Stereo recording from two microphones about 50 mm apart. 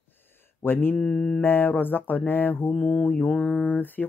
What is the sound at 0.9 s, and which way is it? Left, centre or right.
Mantra, centre.